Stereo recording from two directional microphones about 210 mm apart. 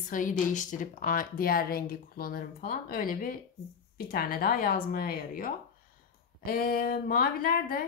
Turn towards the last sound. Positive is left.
turn(degrees=45)  # may be behind; listen again after turning